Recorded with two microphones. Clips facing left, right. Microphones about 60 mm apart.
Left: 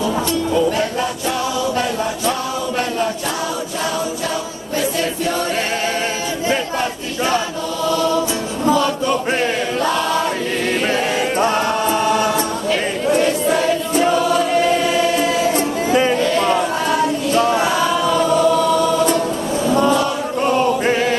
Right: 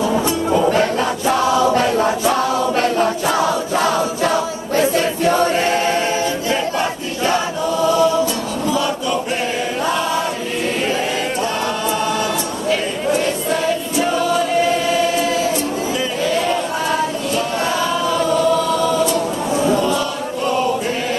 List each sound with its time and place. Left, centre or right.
1.6 s choir: right
4.7 s choir: right
12.6 s choir: centre
16.2 s a sound: centre
16.5 s female singing: centre
17.6 s choir: centre